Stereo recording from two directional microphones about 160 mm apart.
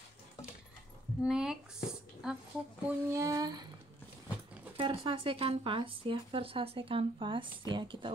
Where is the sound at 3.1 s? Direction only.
20° right (ahead or behind).